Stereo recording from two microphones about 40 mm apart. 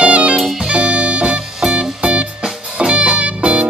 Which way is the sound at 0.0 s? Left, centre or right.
Right.